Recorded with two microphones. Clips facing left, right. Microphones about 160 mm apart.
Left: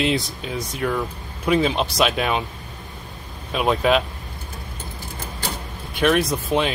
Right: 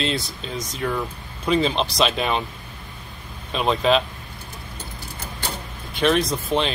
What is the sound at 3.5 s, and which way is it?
Speech, 10° left (ahead or behind).